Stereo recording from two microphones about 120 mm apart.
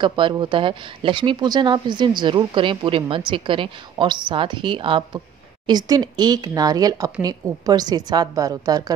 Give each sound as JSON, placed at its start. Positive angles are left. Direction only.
{"t": 0.0, "sound": "speech", "side_deg": -45}
{"t": 5.7, "sound": "speech", "side_deg": -35}